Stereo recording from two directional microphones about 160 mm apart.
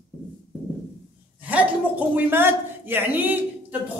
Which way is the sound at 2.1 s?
15° right (ahead or behind).